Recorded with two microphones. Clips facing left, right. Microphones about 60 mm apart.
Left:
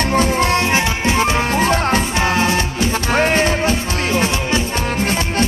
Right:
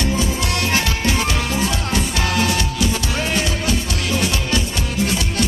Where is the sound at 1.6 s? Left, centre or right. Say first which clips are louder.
Left 7 dB; left.